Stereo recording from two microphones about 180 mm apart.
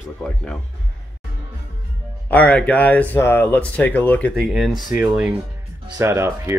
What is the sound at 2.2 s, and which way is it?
Speech, 10° left (ahead or behind).